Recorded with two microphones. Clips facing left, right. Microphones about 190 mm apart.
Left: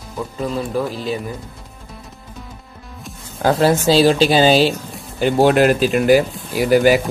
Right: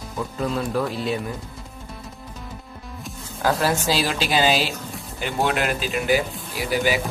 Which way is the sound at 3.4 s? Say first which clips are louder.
Left 7 dB; 25° left (ahead or behind).